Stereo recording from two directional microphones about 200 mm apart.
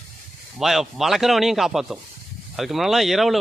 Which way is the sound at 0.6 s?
Centre (ahead or behind).